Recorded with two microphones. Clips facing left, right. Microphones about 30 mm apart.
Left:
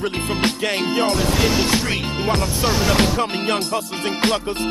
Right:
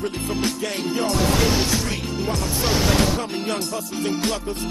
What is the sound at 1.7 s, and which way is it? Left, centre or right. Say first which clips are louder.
Speech: left 4 dB; left.